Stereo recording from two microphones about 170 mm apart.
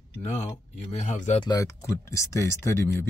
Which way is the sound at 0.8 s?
40° left (ahead or behind).